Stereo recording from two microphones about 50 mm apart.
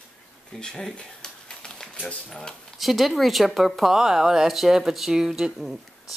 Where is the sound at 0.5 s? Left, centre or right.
Centre.